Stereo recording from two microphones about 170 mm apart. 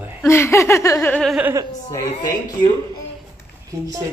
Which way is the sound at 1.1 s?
Centre (ahead or behind).